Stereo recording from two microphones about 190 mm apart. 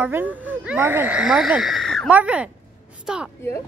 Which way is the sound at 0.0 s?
10° right (ahead or behind).